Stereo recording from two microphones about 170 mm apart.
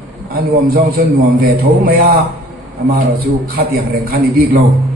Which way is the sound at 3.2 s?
60° right (ahead or behind).